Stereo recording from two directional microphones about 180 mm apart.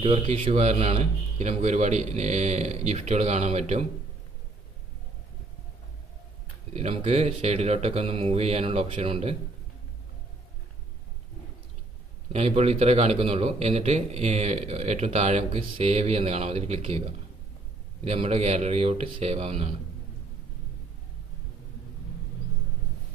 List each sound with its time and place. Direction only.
0.0 s a man's voice: 30° right (ahead or behind)
6.7 s a man's voice: 35° right (ahead or behind)
12.3 s a man's voice: 35° right (ahead or behind)